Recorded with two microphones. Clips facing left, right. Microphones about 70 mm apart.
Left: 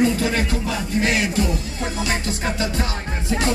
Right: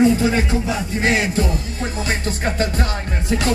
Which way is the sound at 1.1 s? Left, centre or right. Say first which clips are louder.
Right 2 dB; right.